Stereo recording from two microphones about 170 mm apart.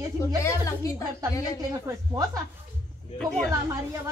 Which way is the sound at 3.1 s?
5° left (ahead or behind).